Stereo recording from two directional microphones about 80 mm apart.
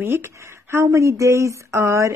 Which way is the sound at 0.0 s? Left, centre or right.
Right.